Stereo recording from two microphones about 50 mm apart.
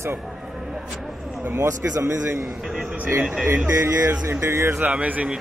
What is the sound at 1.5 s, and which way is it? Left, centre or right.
Speech, right.